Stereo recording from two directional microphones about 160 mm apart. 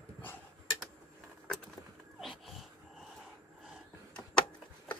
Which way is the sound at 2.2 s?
Centre (ahead or behind).